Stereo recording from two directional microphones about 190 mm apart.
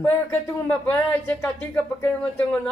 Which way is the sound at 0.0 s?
10° left (ahead or behind).